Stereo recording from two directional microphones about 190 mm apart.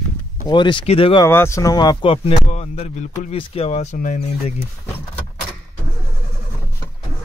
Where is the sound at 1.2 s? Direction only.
15° left (ahead or behind); by 4.5 s 40° left (ahead or behind).